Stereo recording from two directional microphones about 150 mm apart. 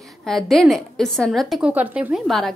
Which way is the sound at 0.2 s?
Centre (ahead or behind).